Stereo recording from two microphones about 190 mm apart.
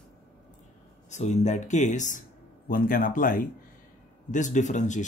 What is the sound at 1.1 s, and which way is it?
A man's voice, 40° left (ahead or behind).